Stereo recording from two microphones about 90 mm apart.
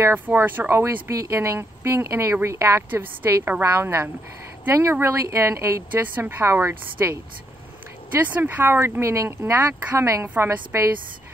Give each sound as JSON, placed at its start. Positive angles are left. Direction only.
{"t": 0.0, "sound": "speech", "side_deg": -25}
{"t": 6.1, "sound": "speech", "side_deg": -20}
{"t": 8.3, "sound": "speech", "side_deg": -20}